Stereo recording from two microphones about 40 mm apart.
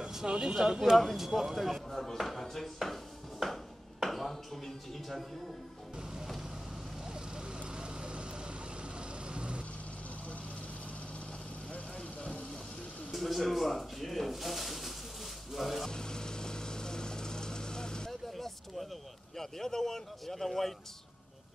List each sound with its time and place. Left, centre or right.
0.0 s speech: centre
7.1 s vehicle: right
11.7 s vehicle: left
13.1 s speech: centre
15.5 s music: centre
15.9 s vehicle: centre
18.3 s a sound: centre
19.3 s a man's voice: centre